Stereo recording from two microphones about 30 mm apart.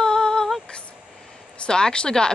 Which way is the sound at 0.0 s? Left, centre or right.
Left.